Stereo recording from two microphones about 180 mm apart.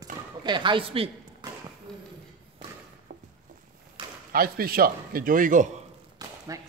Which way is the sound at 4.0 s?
25° right (ahead or behind).